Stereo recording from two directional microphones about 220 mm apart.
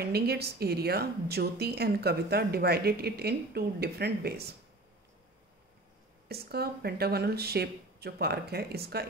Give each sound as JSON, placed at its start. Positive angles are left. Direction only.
{"t": 0.0, "sound": "a woman's voice", "side_deg": -45}
{"t": 6.2, "sound": "a woman's voice", "side_deg": -45}